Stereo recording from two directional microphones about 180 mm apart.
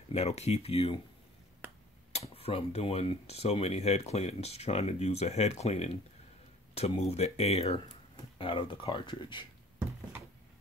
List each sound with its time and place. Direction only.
0.1 s speech: 35° left (ahead or behind)
2.1 s speech: 35° left (ahead or behind)